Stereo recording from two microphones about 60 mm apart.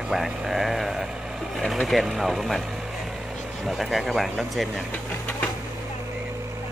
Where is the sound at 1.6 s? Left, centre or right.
Centre.